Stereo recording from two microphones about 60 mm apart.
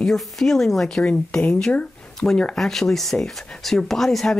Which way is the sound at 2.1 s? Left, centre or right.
Centre.